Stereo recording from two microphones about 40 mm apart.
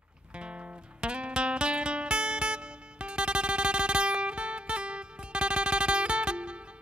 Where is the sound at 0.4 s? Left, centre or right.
Right.